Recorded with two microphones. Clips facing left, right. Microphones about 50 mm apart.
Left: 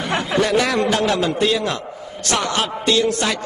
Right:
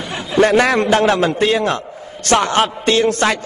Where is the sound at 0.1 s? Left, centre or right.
Left.